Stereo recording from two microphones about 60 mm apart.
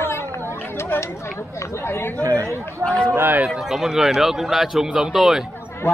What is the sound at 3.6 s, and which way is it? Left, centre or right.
A man's voice, centre.